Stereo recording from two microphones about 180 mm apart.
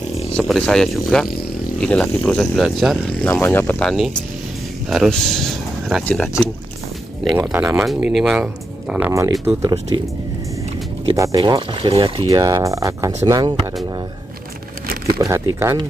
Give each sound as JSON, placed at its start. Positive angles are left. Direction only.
{"t": 0.4, "sound": "speech", "side_deg": 5}
{"t": 7.4, "sound": "speech", "side_deg": -5}
{"t": 11.1, "sound": "speech", "side_deg": -20}
{"t": 15.1, "sound": "speech", "side_deg": -15}